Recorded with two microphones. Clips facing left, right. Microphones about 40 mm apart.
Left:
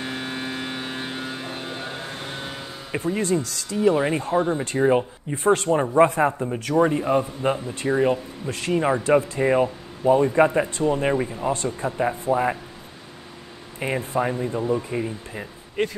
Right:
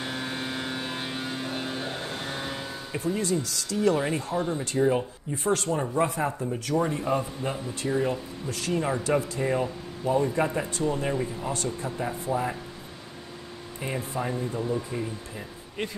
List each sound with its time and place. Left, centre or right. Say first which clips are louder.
0.1 s vehicle: left 2 dB; left
1.6 s vehicle: even; centre
2.9 s speech: left 5 dB; left
3.7 s speech: left 4 dB; left
13.7 s speech: left 7 dB; left